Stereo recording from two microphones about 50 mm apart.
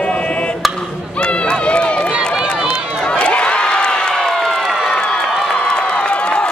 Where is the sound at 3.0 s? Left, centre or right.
Centre.